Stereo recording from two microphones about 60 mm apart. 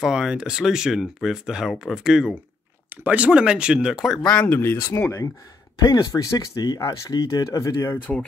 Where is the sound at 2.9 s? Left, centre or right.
Right; by 4.2 s centre.